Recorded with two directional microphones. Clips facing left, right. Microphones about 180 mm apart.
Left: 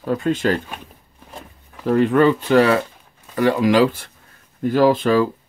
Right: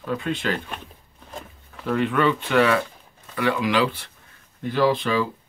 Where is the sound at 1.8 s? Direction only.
40° left (ahead or behind).